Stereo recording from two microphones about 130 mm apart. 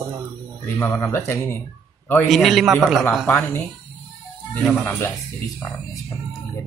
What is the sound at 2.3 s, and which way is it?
Speech, centre (ahead or behind).